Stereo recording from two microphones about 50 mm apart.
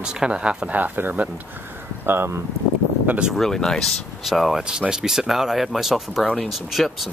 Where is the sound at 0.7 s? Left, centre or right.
Right.